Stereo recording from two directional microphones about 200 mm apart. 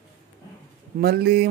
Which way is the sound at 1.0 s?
50° right (ahead or behind).